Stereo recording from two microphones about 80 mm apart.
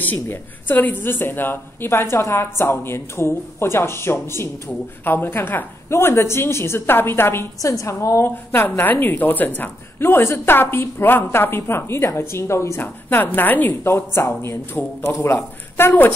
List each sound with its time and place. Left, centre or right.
0.0 s a woman's voice: left
7.6 s a woman's voice: left
8.5 s a woman's voice: left
12.8 s a woman's voice: left
15.8 s a woman's voice: left